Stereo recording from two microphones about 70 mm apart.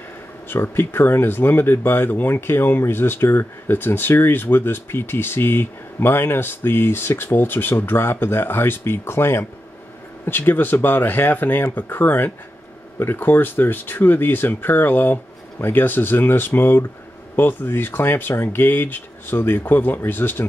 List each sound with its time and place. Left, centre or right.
0.5 s speech: left